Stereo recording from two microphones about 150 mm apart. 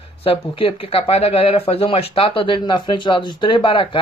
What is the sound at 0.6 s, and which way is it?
Speech, 40° left (ahead or behind).